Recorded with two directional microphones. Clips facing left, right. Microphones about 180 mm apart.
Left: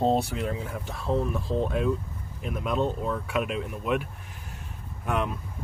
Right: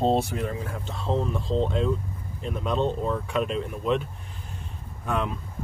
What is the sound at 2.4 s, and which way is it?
Speech, 5° left (ahead or behind).